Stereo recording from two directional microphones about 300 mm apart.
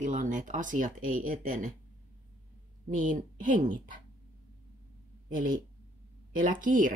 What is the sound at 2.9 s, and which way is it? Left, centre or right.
Speech, right.